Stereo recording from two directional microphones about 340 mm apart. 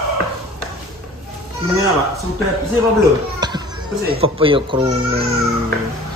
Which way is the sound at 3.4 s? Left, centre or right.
Centre.